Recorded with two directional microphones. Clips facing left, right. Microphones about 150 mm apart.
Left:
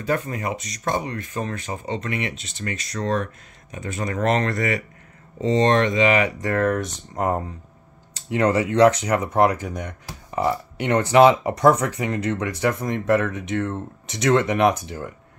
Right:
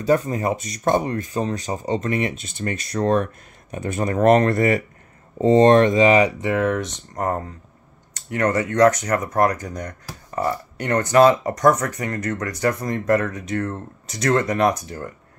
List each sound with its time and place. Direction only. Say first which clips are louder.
0.0 s speech: right 5 dB; 35° right (ahead or behind)
1.3 s speech: right 4 dB; 30° right (ahead or behind)
6.4 s speech: right 1 dB; 5° right (ahead or behind)
7.2 s speech: left 1 dB; 15° left (ahead or behind)